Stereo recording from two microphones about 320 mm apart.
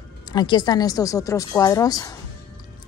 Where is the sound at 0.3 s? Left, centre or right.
Centre.